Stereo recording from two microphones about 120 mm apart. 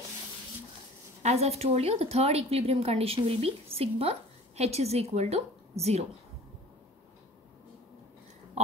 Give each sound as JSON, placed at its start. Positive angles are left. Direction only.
{"t": 1.2, "sound": "a woman's voice", "side_deg": -60}